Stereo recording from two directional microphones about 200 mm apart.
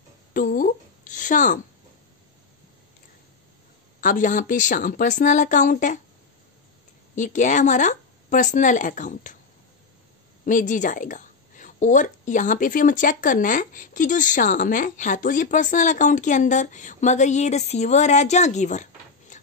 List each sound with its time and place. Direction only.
0.3 s a woman's voice: 45° left (ahead or behind)
4.0 s a woman's voice: 40° left (ahead or behind)
7.2 s a woman's voice: 40° left (ahead or behind)
10.4 s a woman's voice: 40° left (ahead or behind)